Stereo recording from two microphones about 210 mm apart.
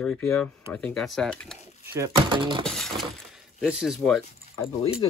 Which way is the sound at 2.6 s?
Centre (ahead or behind).